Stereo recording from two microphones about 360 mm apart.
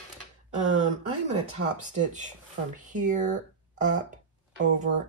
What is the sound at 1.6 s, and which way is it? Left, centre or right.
Speech, right.